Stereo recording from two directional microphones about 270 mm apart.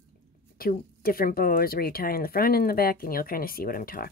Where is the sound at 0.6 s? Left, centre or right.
Left.